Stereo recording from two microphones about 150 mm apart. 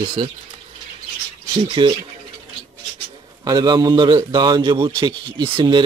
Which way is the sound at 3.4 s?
25° right (ahead or behind).